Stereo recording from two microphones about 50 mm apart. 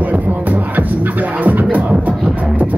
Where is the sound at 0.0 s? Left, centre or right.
Right.